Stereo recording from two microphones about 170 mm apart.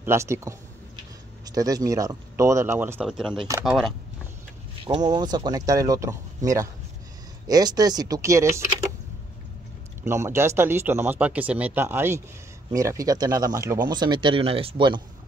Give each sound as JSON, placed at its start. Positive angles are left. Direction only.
{"t": 0.0, "sound": "speech", "side_deg": -15}
{"t": 3.4, "sound": "speech", "side_deg": -20}
{"t": 4.8, "sound": "speech", "side_deg": -25}
{"t": 10.0, "sound": "speech", "side_deg": -15}